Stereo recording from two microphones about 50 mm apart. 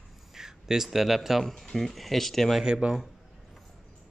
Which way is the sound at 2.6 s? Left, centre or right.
Centre.